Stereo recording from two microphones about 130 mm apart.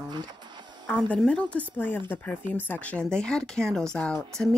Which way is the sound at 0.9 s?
10° left (ahead or behind).